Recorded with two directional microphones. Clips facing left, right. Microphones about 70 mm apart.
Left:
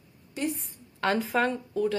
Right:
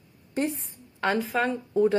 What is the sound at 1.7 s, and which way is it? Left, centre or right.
Speech, right.